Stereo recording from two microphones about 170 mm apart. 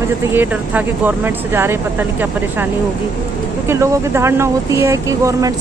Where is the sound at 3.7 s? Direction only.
15° right (ahead or behind).